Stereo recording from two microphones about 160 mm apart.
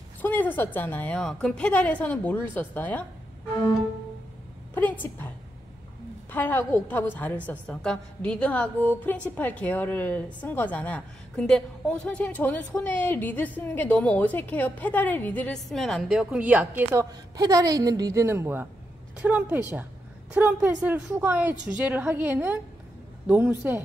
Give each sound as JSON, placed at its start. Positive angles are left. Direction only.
{"t": 0.2, "sound": "a woman's voice", "side_deg": 10}
{"t": 4.7, "sound": "a woman's voice", "side_deg": 10}
{"t": 6.3, "sound": "a woman's voice", "side_deg": 10}